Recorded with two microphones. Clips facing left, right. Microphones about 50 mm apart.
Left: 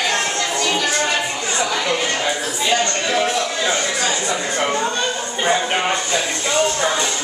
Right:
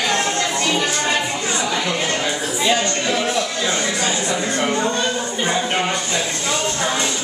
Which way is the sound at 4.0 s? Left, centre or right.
Centre.